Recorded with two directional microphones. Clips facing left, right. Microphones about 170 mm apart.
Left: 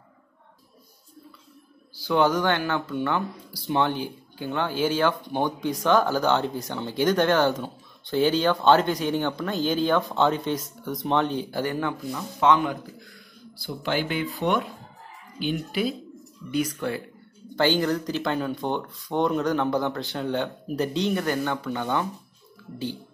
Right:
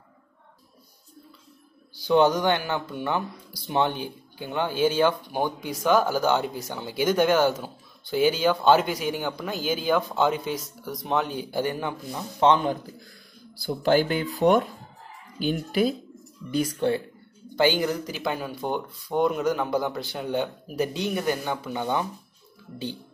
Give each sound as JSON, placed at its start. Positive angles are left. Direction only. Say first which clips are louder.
{"t": 2.0, "sound": "speech", "louder": "right 2 dB", "side_deg": -20}
{"t": 12.4, "sound": "speech", "louder": "right 1 dB", "side_deg": -30}
{"t": 13.6, "sound": "speech", "louder": "right 6 dB", "side_deg": -40}
{"t": 16.4, "sound": "speech", "louder": "right 2 dB", "side_deg": -30}
{"t": 17.6, "sound": "speech", "louder": "even", "side_deg": -15}